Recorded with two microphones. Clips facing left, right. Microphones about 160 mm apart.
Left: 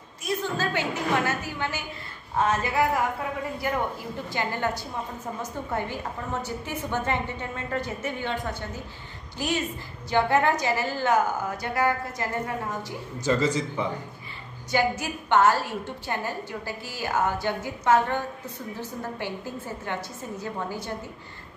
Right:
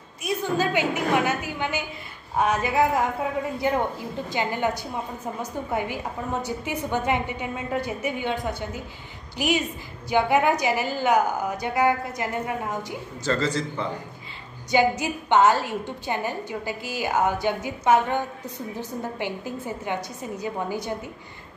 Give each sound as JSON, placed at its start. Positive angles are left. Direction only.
{"t": 0.2, "sound": "a woman's voice", "side_deg": -15}
{"t": 13.2, "sound": "a man's voice", "side_deg": 10}
{"t": 14.7, "sound": "a woman's voice", "side_deg": -20}